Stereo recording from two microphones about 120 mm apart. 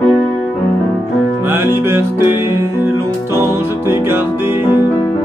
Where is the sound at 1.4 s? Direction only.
20° right (ahead or behind).